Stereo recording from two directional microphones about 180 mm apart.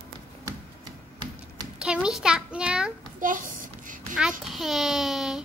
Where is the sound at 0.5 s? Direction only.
25° right (ahead or behind).